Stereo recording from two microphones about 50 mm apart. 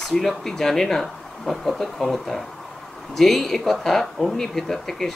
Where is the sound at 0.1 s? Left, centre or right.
Centre.